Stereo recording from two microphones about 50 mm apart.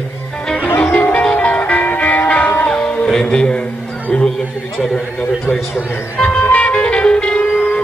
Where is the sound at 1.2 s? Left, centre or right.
Left.